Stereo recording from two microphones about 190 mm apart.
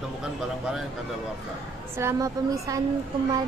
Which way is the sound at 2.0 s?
15° right (ahead or behind).